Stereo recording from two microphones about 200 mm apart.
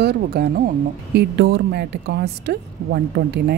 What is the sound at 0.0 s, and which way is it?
A woman's voice, 50° right (ahead or behind).